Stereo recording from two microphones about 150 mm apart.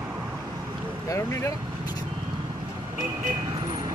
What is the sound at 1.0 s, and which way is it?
Vehicle, 20° left (ahead or behind).